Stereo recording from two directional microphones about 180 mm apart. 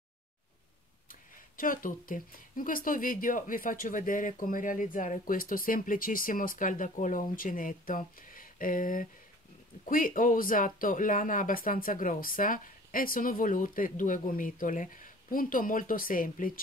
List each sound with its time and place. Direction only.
1.6 s speech: 50° left (ahead or behind)